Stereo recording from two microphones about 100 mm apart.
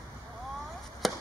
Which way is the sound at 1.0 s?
Centre (ahead or behind).